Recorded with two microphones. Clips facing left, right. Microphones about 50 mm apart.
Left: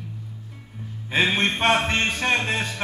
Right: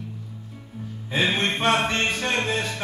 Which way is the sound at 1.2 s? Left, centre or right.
Centre.